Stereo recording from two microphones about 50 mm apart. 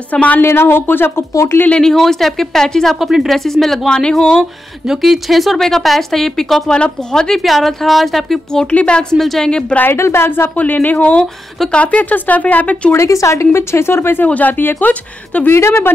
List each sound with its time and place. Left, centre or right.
0.1 s a woman's voice: left
0.4 s speech: left
1.8 s speech: centre
3.0 s speech: centre
4.8 s speech: centre
8.6 s a woman's voice: left
9.1 s speech: centre
9.4 s speech: centre
9.9 s a woman's voice: left
10.5 s speech: left
11.0 s a woman's voice: left
12.9 s a woman's voice: left
14.2 s speech: left
15.5 s a woman's voice: left